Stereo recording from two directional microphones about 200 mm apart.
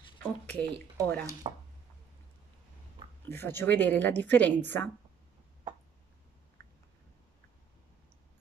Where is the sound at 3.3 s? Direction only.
10° left (ahead or behind).